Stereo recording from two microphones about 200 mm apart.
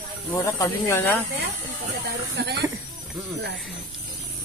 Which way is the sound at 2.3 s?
55° right (ahead or behind).